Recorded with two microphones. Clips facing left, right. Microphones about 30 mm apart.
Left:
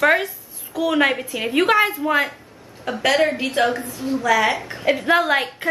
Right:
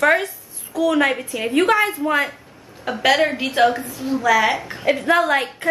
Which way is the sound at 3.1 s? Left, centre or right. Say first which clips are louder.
Right 1 dB; centre.